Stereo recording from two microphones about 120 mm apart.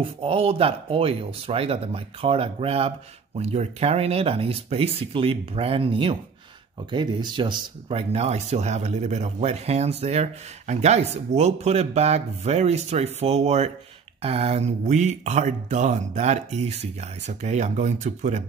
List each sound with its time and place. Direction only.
0.0 s speech: 50° right (ahead or behind); by 18.4 s 90° right